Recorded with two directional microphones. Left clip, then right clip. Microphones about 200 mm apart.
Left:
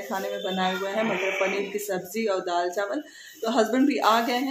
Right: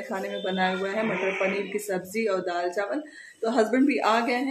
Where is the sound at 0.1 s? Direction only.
5° right (ahead or behind).